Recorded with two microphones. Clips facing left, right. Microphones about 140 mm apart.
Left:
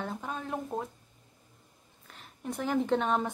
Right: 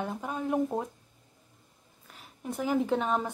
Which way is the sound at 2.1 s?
5° right (ahead or behind).